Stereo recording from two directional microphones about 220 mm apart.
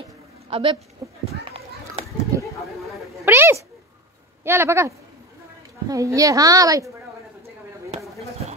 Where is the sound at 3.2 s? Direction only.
10° right (ahead or behind).